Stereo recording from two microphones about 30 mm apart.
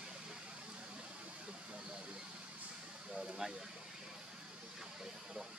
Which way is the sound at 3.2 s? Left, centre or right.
Right.